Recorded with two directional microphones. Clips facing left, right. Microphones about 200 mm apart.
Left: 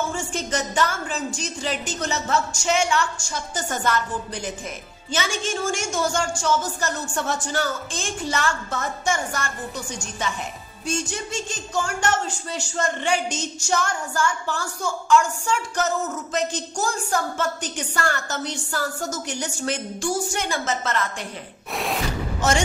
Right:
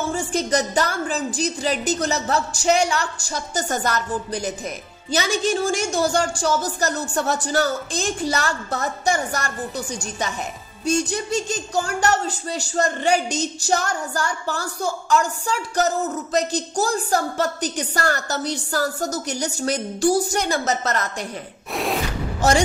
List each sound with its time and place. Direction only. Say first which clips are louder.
0.1 s a woman's voice: right 5 dB; 35° right (ahead or behind)
10.9 s a woman's voice: right 6 dB; 35° right (ahead or behind)
21.7 s a sound: right 3 dB; centre (ahead or behind)